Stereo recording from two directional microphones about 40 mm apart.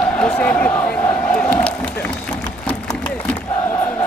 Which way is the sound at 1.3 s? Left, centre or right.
Left.